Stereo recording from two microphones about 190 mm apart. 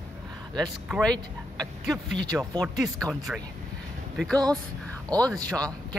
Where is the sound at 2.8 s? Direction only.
Centre (ahead or behind).